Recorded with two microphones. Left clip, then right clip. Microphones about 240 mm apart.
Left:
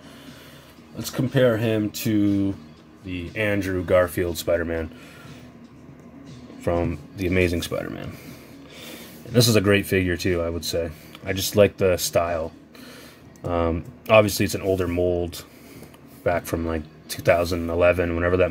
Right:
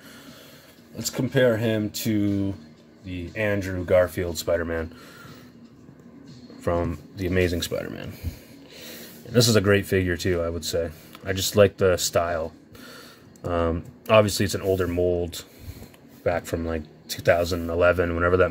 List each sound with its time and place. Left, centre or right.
0.9 s speech: centre
6.6 s speech: centre
9.3 s speech: centre